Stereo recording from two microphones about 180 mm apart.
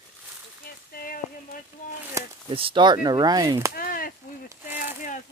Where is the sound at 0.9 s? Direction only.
50° left (ahead or behind).